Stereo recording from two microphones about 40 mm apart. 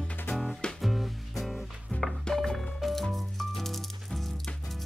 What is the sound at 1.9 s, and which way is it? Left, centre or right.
Music, left.